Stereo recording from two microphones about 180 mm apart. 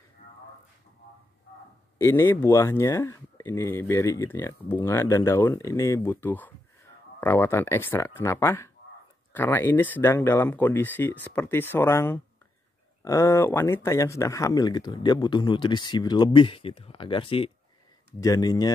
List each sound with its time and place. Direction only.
2.0 s speech: 15° left (ahead or behind); by 17.5 s 30° left (ahead or behind)
18.2 s speech: 20° left (ahead or behind)